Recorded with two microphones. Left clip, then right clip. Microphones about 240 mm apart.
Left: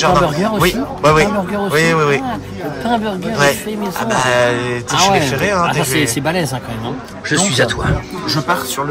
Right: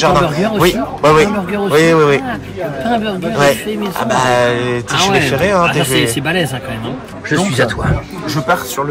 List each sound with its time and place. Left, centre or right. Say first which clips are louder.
0.0 s speech: right 1 dB; centre